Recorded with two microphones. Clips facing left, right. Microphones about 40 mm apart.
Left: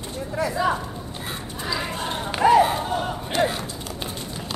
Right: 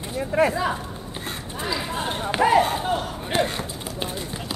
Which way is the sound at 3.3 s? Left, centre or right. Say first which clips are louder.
Left 1 dB; right.